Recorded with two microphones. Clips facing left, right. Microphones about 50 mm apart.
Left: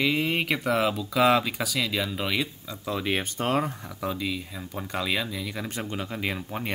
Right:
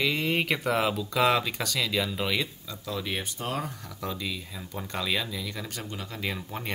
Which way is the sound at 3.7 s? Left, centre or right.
Centre.